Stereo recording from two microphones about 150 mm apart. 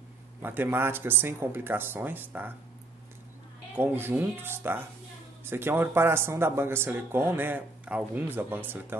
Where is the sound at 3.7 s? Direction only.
15° right (ahead or behind).